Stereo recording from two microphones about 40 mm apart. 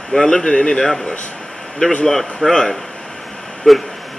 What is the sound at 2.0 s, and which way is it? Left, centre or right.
A man's voice, centre.